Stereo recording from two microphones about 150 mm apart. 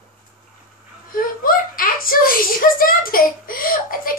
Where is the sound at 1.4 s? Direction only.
70° left (ahead or behind).